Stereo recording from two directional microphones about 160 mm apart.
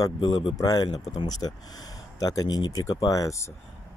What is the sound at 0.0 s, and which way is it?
Speech, 25° left (ahead or behind).